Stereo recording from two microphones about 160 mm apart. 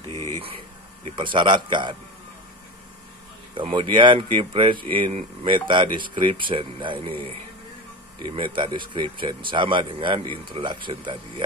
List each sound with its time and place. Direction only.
0.1 s a sound: 15° left (ahead or behind)
1.0 s speech: 30° right (ahead or behind)
3.5 s speech: 30° right (ahead or behind)